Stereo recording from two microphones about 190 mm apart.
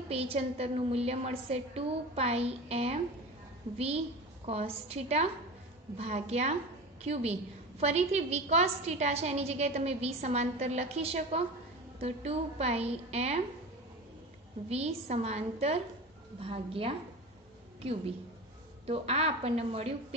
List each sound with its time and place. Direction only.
0.1 s a woman's voice: 30° right (ahead or behind)
14.7 s a woman's voice: 35° right (ahead or behind)
18.9 s a woman's voice: 35° right (ahead or behind)